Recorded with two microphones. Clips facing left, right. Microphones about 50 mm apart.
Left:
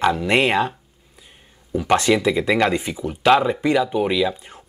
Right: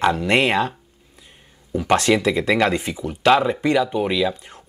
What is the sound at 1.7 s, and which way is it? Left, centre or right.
Speech, centre.